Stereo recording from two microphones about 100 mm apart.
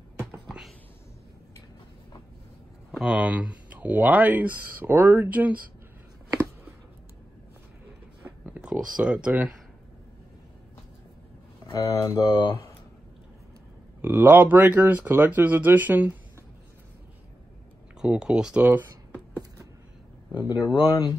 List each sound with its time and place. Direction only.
0.5 s a sound: 5° right (ahead or behind)
2.9 s speech: 10° right (ahead or behind)
8.2 s a sound: 25° right (ahead or behind)
8.5 s speech: 10° right (ahead or behind)
11.7 s speech: 40° left (ahead or behind)
14.0 s speech: 20° right (ahead or behind)
18.0 s speech: 10° right (ahead or behind)
20.7 s speech: 50° left (ahead or behind)